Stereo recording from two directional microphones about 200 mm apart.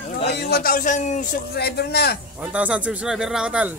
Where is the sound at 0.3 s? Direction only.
55° left (ahead or behind).